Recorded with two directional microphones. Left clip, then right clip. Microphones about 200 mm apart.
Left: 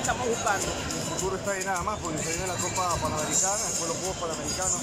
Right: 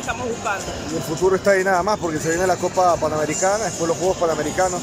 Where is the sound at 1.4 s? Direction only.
50° right (ahead or behind).